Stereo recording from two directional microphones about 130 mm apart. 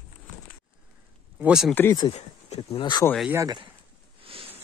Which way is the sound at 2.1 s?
50° left (ahead or behind).